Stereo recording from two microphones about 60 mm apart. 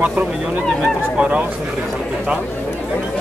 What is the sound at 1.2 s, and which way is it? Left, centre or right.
Speech, right.